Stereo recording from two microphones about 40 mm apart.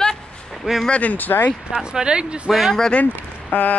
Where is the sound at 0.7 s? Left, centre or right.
Centre.